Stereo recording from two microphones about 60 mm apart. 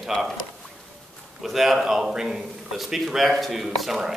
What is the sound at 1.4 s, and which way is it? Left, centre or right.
A man's voice, centre.